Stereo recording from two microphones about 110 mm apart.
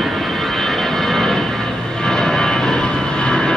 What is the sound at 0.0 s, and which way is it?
Vehicle, centre (ahead or behind).